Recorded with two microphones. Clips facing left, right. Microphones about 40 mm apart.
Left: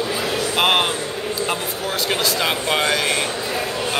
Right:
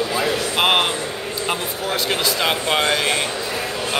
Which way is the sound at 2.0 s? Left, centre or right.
Centre.